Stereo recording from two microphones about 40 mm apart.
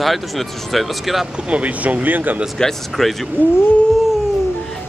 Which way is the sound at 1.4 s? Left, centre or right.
Right.